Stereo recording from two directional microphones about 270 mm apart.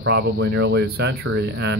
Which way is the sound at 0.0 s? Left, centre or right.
Right.